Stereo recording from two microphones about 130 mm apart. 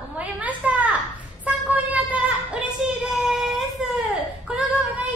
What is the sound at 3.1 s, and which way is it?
Child singing, centre (ahead or behind).